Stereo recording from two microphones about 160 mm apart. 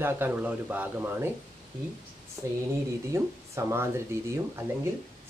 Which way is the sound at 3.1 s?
15° right (ahead or behind).